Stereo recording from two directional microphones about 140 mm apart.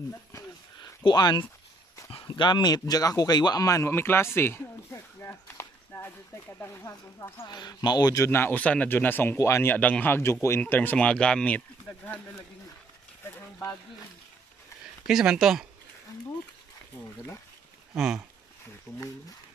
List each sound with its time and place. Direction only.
1.0 s speech: 30° left (ahead or behind); by 11.6 s 10° left (ahead or behind)
15.0 s speech: 5° right (ahead or behind)
17.9 s speech: 5° right (ahead or behind)